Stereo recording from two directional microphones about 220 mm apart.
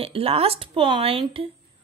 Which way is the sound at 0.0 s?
25° right (ahead or behind).